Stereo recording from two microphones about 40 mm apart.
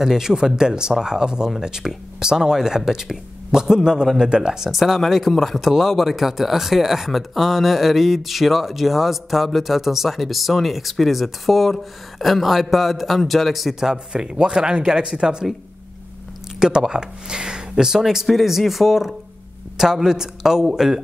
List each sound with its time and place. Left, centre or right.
0.0 s speech: centre
4.6 s speech: centre
14.1 s speech: right
16.5 s speech: centre